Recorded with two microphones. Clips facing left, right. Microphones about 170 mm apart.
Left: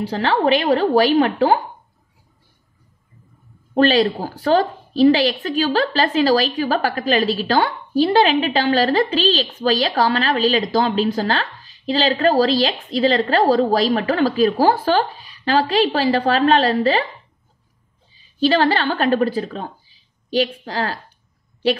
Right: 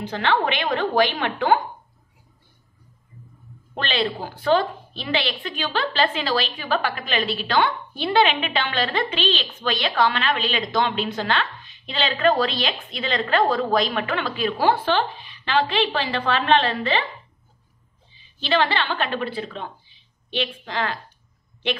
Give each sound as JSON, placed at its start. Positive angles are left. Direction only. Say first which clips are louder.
{"t": 0.0, "sound": "a woman's voice", "louder": "left 4 dB", "side_deg": 35}
{"t": 3.7, "sound": "a woman's voice", "louder": "left 10 dB", "side_deg": 40}
{"t": 18.1, "sound": "a woman's voice", "louder": "left 6 dB", "side_deg": 40}